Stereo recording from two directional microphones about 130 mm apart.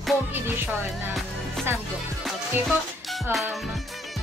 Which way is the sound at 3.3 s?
Centre (ahead or behind).